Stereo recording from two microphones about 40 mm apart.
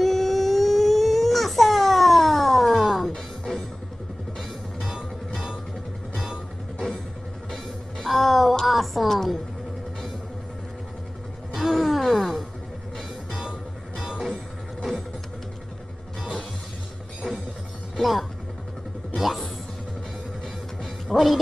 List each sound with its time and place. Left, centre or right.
0.0 s baby cry: centre
2.8 s music: centre
4.8 s music: centre
8.0 s music: centre
8.6 s a sound: centre
11.5 s music: centre
13.3 s music: centre
17.9 s music: centre
21.1 s music: centre